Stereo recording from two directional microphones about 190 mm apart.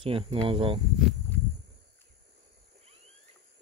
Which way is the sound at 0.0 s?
30° right (ahead or behind).